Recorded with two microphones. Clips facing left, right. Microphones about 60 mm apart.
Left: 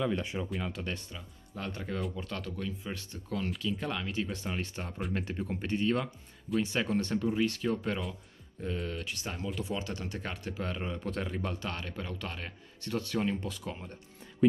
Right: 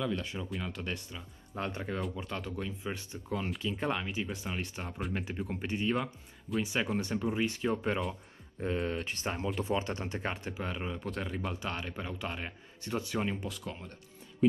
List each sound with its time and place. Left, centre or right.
0.0 s speech: centre
0.5 s speech: centre
1.5 s speech: right
4.0 s speech: centre
8.1 s speech: right
10.5 s speech: centre
11.6 s speech: centre
13.5 s speech: centre